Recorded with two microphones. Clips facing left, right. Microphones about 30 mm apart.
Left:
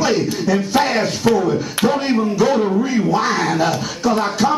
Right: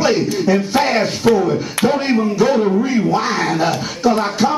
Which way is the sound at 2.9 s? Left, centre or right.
Centre.